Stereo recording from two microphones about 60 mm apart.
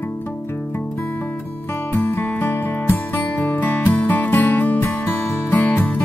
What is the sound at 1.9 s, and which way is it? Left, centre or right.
Music, left.